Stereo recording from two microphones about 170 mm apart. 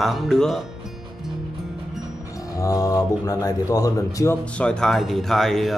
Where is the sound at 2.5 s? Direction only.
20° left (ahead or behind).